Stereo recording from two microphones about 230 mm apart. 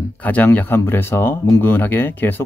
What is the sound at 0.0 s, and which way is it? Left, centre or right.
Speech, centre.